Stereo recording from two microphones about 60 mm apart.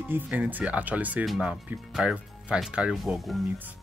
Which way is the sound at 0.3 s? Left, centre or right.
Right.